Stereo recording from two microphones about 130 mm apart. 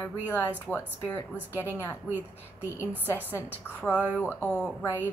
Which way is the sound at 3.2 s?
15° left (ahead or behind).